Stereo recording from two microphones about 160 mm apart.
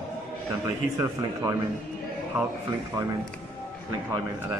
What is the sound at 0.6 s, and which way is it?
Speech, 20° right (ahead or behind).